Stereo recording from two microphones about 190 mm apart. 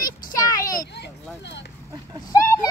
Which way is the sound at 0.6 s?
50° left (ahead or behind).